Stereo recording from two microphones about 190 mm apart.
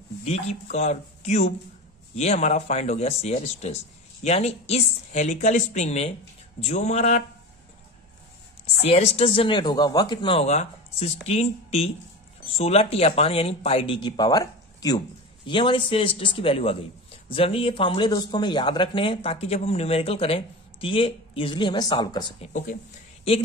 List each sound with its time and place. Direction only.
0.2 s speech: 35° left (ahead or behind)
8.8 s a man's voice: 30° left (ahead or behind)